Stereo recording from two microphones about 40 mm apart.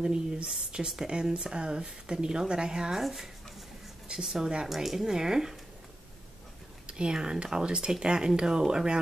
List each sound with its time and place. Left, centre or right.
0.0 s speech: right
3.0 s speech: centre
4.6 s speech: centre
6.9 s speech: right